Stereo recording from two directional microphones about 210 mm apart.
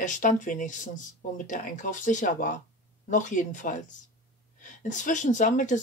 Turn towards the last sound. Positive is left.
turn(degrees=35)  # may be behind; listen again after turning